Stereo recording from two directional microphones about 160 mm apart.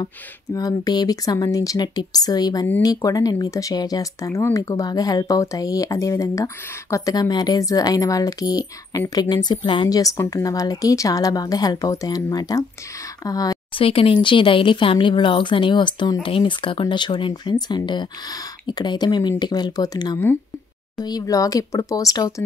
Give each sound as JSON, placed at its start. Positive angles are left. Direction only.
{"t": 0.0, "sound": "speech", "side_deg": 25}
{"t": 13.8, "sound": "speech", "side_deg": 35}